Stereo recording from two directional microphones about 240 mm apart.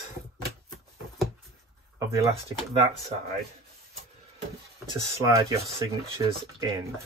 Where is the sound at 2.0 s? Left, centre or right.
Centre.